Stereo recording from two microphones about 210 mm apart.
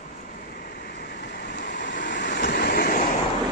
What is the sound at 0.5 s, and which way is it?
Vehicle, 45° left (ahead or behind).